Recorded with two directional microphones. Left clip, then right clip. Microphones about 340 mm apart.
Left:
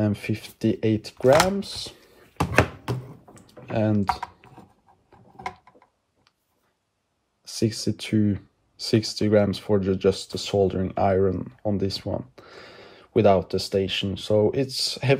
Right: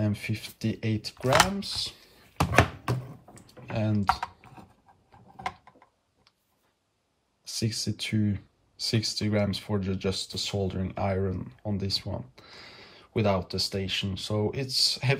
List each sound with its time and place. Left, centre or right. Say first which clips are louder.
0.0 s speech: left 6 dB; centre
2.1 s a sound: left 2 dB; centre
2.6 s computer keyboard: left 2 dB; centre
5.4 s mechanisms: left 1 dB; centre
7.4 s speech: left 6 dB; centre